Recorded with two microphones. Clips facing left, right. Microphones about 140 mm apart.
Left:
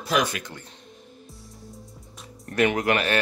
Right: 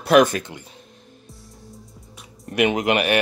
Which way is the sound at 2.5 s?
20° right (ahead or behind).